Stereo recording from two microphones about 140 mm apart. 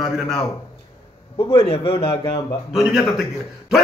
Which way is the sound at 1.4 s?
40° left (ahead or behind).